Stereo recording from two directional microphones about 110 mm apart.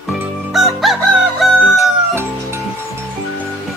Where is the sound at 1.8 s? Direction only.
25° right (ahead or behind).